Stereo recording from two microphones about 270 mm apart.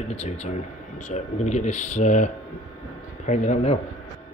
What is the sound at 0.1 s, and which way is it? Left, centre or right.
Speech, left.